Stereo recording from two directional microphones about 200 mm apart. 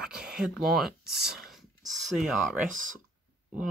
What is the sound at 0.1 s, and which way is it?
Speech, centre (ahead or behind).